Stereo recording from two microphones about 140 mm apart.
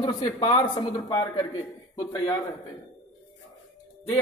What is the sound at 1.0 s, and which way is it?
A man's voice, 25° left (ahead or behind).